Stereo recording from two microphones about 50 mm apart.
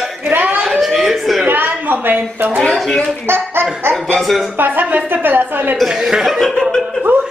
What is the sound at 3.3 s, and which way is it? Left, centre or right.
Speech, right.